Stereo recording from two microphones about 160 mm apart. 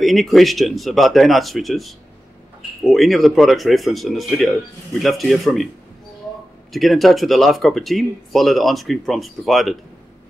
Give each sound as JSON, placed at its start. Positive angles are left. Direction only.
{"t": 0.0, "sound": "speech", "side_deg": 0}
{"t": 6.7, "sound": "speech", "side_deg": 0}